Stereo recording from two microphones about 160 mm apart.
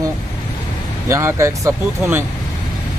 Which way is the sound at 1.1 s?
20° right (ahead or behind).